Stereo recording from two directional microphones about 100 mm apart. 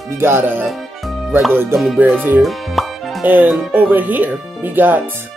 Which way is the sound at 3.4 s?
15° right (ahead or behind).